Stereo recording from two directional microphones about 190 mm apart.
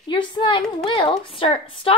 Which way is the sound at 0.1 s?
25° left (ahead or behind).